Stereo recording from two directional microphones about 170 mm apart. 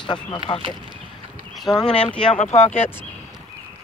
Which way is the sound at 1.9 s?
5° left (ahead or behind).